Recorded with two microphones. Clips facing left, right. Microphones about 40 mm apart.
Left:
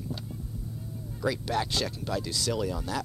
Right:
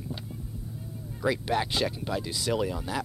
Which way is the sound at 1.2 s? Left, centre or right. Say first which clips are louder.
Right 2 dB; right.